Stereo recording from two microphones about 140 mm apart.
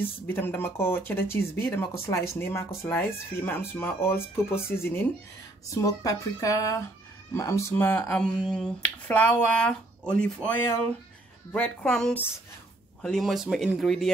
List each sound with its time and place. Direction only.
0.0 s speech: 15° left (ahead or behind)
11.5 s speech: 5° left (ahead or behind)